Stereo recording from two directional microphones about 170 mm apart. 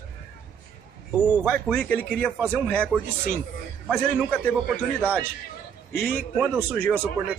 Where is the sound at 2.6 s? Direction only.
10° left (ahead or behind).